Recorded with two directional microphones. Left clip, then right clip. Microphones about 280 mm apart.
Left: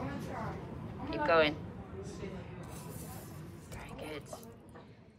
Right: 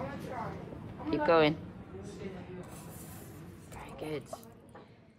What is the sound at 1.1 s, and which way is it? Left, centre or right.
Speech, centre.